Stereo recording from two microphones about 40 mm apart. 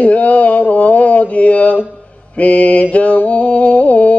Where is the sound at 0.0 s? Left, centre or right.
Left.